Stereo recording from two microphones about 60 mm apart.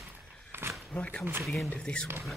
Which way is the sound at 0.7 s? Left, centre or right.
Centre.